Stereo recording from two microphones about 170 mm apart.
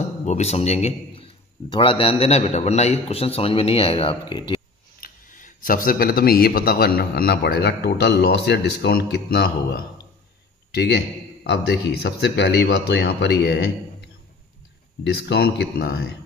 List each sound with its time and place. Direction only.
0.2 s a man's voice: 40° left (ahead or behind); by 4.6 s 25° left (ahead or behind)
5.0 s speech: 50° left (ahead or behind)
10.7 s a man's voice: 75° left (ahead or behind)
11.4 s speech: 90° left
15.2 s speech: 80° left